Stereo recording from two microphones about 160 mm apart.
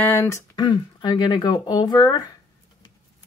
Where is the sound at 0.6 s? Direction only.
25° left (ahead or behind).